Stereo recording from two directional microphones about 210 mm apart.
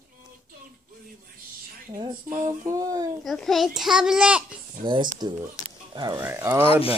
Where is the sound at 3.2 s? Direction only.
Centre (ahead or behind).